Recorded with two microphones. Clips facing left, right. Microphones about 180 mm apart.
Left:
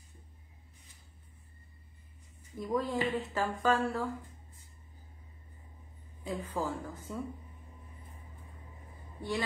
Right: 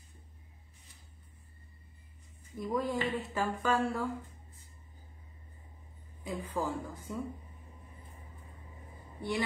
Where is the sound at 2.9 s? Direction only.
10° left (ahead or behind).